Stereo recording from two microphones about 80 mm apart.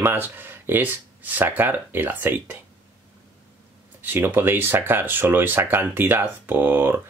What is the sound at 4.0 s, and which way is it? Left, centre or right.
Speech, right.